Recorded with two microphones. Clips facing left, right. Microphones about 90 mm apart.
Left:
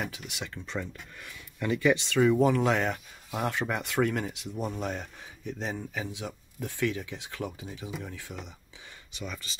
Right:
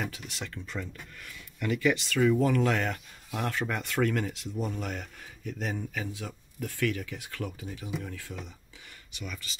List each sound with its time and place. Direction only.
0.0 s speech: 15° left (ahead or behind)
9.2 s speech: 30° left (ahead or behind)